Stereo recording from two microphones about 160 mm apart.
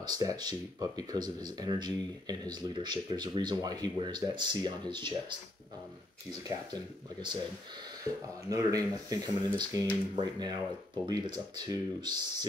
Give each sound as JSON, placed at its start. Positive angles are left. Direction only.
{"t": 0.0, "sound": "speech", "side_deg": -25}
{"t": 6.4, "sound": "speech", "side_deg": -25}
{"t": 8.5, "sound": "speech", "side_deg": -20}